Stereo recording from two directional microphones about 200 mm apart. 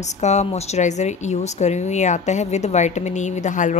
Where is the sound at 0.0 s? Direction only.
35° left (ahead or behind).